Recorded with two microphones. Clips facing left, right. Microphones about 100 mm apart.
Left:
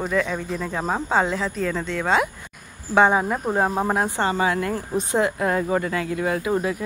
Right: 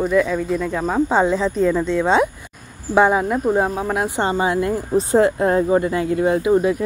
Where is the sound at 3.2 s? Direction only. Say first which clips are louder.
Right 4 dB; 5° left (ahead or behind).